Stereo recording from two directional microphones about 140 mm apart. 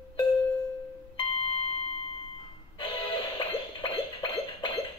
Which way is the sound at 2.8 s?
40° left (ahead or behind).